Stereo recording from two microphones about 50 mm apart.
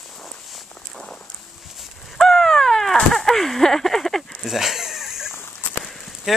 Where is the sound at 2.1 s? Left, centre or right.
Centre.